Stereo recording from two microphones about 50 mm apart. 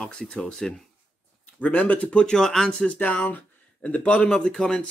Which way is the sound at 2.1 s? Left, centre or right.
Centre.